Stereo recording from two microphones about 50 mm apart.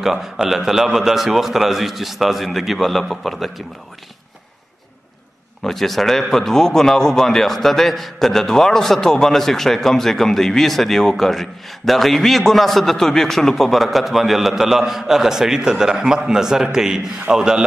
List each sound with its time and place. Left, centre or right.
0.0 s a man's voice: centre
5.6 s a man's voice: centre